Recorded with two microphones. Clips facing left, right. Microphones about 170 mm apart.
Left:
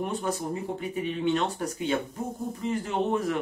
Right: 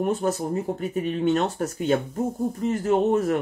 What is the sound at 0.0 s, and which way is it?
Speech, 45° right (ahead or behind).